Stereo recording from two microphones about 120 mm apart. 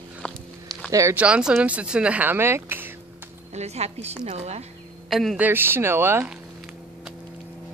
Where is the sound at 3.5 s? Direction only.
65° right (ahead or behind).